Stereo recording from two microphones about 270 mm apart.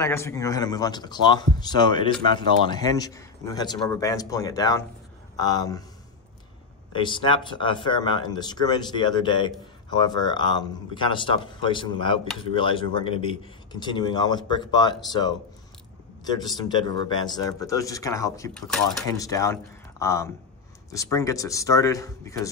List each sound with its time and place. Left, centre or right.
0.0 s speech: centre
6.9 s speech: centre
19.0 s speech: centre